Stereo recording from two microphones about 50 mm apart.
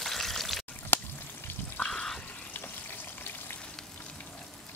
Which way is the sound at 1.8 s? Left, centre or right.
Centre.